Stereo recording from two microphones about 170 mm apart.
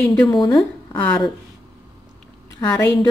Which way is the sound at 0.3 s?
20° left (ahead or behind).